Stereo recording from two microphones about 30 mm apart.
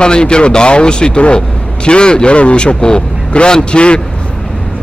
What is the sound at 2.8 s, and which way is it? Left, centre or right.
Speech, left.